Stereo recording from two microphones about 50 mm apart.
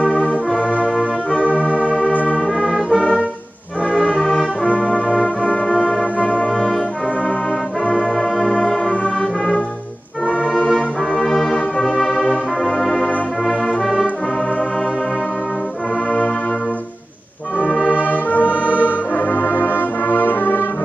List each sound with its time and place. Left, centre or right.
0.0 s music: left
1.6 s church bell: right
2.4 s music: centre
4.2 s brass instrument: centre
6.1 s music: left
9.0 s music: centre
10.4 s brass instrument: left
11.1 s brass instrument: centre
12.3 s music: centre
17.6 s brass instrument: left
18.5 s music: right
18.9 s brass instrument: left